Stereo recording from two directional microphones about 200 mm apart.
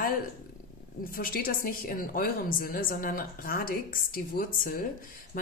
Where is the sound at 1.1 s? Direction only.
45° left (ahead or behind).